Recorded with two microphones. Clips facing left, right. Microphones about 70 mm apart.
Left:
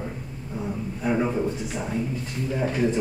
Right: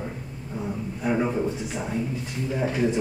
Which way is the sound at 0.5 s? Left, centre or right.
Centre.